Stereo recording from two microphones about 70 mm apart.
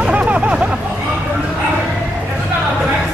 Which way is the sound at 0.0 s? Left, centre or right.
Centre.